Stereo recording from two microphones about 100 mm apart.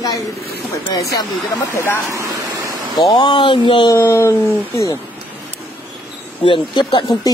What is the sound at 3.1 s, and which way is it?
Speech, 50° left (ahead or behind).